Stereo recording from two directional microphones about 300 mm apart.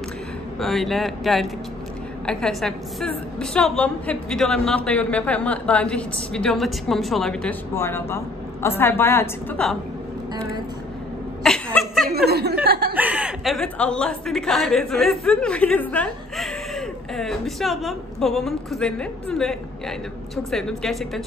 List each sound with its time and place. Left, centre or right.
0.6 s a woman's voice: centre
11.4 s speech: centre
12.1 s speech: right
12.9 s a woman's voice: centre